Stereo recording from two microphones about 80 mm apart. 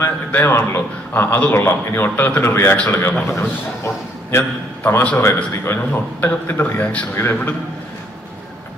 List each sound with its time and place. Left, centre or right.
0.0 s a man's voice: left
4.8 s a man's voice: left
5.1 s a man's voice: left